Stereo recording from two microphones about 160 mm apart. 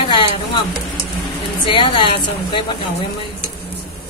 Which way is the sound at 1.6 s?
30° left (ahead or behind).